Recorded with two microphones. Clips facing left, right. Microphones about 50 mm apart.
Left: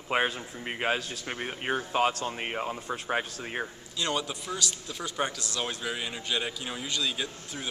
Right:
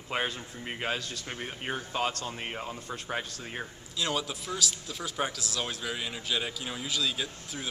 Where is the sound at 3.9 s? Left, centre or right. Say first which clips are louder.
Left 1 dB; centre.